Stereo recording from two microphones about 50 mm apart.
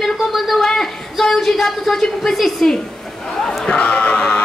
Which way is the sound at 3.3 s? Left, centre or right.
Centre.